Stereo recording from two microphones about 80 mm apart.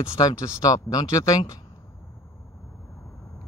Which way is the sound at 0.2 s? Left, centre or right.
Left.